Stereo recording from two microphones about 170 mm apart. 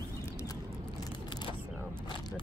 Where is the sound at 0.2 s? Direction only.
15° left (ahead or behind).